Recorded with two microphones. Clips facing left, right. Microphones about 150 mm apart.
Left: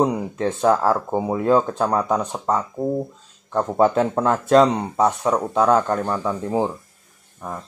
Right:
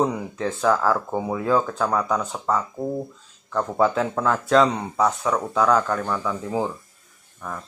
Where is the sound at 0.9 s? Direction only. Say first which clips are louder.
Left 3 dB; 10° left (ahead or behind).